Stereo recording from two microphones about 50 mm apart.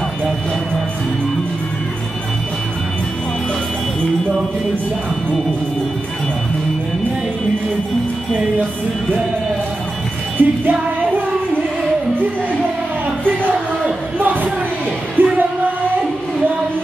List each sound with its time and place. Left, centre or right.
10.3 s music: right
14.1 s a sound: right
15.2 s music: right